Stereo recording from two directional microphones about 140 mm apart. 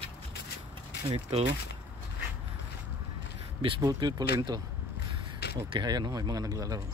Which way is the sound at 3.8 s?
30° right (ahead or behind).